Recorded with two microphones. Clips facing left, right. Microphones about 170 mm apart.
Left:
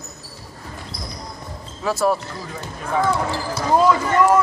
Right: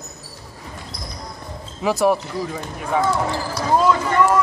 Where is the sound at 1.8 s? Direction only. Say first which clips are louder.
Right 2 dB; 15° right (ahead or behind).